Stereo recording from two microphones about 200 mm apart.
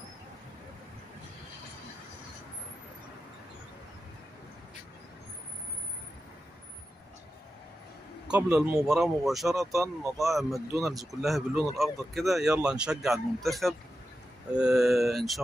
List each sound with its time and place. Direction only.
8.3 s speech: 5° right (ahead or behind)
9.6 s speech: 15° right (ahead or behind)
10.1 s speech: centre (ahead or behind)